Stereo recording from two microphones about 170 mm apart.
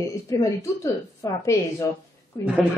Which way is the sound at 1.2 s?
20° left (ahead or behind).